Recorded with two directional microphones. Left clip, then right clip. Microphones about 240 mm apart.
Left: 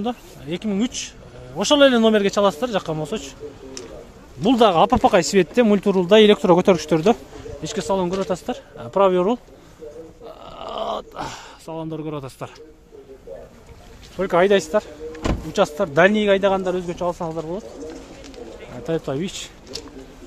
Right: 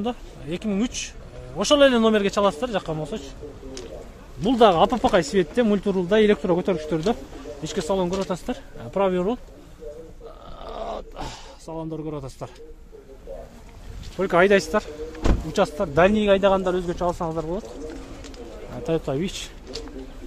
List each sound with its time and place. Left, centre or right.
0.0 s speech: centre; by 3.3 s left
4.4 s speech: centre
7.6 s speech: centre
10.2 s a sound: left
14.1 s a man's voice: centre
15.5 s a man's voice: centre
18.9 s a man's voice: centre